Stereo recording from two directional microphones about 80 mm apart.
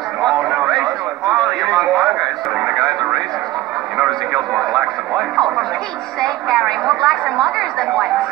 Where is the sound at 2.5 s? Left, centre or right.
Centre.